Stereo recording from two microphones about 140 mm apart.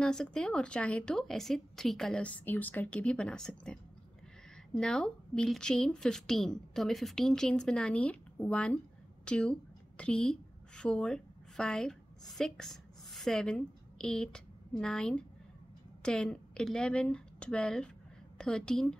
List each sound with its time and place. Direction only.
0.0 s a woman's voice: 5° left (ahead or behind)